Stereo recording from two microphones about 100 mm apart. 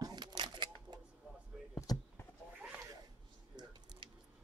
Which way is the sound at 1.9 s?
40° left (ahead or behind).